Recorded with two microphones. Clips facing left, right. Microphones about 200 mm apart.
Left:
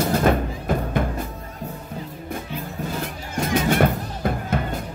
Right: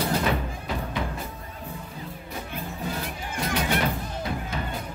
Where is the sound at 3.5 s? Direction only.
50° left (ahead or behind).